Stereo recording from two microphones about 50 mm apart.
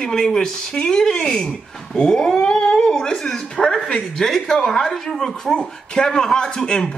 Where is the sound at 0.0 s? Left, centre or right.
Centre.